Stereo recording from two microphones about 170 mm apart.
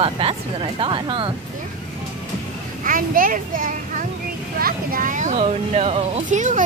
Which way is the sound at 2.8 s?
55° right (ahead or behind).